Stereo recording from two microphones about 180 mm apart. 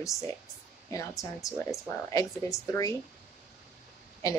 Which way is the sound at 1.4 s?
20° left (ahead or behind).